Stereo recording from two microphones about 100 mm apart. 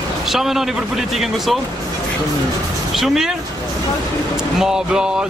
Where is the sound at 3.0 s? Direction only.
5° right (ahead or behind).